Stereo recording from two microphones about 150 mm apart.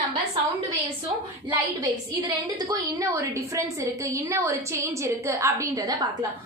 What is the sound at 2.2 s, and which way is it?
Speech, 30° right (ahead or behind).